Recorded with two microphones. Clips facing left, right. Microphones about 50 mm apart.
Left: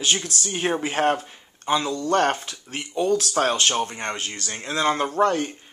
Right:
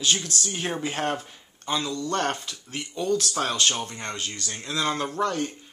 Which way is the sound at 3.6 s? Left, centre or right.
Left.